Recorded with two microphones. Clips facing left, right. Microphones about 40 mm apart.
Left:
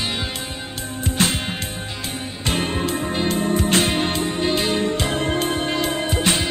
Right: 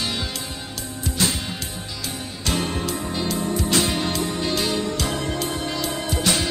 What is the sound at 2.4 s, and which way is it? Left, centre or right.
Music, left.